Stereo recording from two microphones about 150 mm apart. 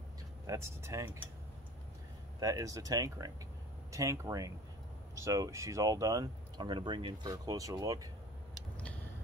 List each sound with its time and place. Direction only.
0.5 s speech: 20° right (ahead or behind)
2.4 s speech: 25° right (ahead or behind)
8.7 s a sound: 10° left (ahead or behind)